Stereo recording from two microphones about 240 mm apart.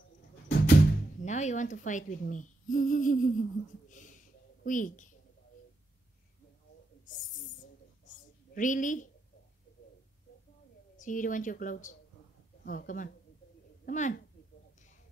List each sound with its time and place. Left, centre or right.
0.5 s music: left
1.2 s speech: left
3.9 s a sound: left
4.6 s speech: left
7.1 s snake: left
8.1 s a sound: left
11.0 s speech: left